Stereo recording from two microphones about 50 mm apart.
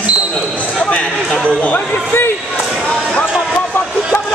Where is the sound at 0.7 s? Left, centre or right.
Left.